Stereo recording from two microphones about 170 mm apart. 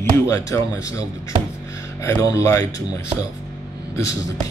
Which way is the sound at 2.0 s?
15° left (ahead or behind).